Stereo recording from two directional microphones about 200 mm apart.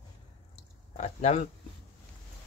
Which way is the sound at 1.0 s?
35° left (ahead or behind).